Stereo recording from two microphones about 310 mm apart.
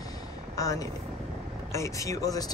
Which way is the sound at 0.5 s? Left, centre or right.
Centre.